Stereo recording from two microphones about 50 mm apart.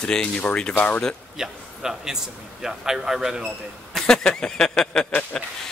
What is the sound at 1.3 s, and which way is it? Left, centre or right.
A man's voice, centre.